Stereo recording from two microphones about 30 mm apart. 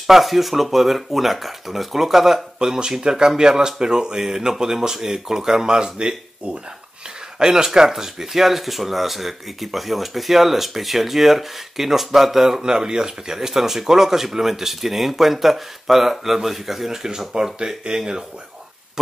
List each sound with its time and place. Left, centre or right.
0.0 s speech: centre
5.9 s speech: right
7.3 s speech: right
12.6 s speech: right